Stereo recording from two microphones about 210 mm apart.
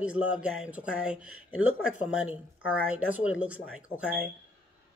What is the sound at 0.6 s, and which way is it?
Speech, 5° right (ahead or behind).